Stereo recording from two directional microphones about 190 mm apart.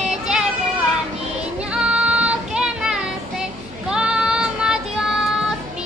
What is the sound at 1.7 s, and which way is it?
Child singing, 5° right (ahead or behind).